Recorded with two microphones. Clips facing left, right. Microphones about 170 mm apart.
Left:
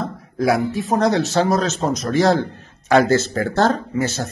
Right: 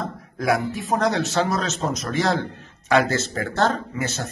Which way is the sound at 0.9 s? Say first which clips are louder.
Left 4 dB; 40° left (ahead or behind).